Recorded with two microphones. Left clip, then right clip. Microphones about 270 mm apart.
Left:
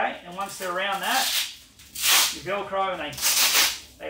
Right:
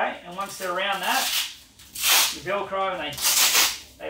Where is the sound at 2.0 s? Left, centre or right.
Centre.